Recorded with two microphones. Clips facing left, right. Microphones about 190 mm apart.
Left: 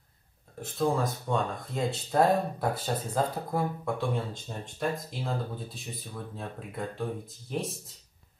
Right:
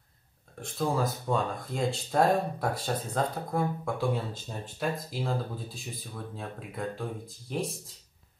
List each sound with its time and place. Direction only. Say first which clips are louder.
0.6 s speech: left 1 dB; centre (ahead or behind)